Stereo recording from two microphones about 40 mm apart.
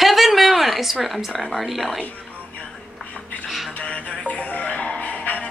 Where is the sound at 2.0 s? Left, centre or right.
Left.